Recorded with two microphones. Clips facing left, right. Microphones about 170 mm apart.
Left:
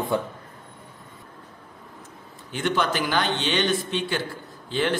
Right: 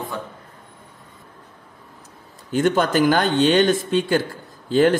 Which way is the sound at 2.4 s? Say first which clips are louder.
Right 6 dB; 45° right (ahead or behind).